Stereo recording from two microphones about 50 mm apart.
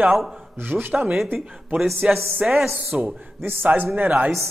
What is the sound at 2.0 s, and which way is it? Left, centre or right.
Speech, right.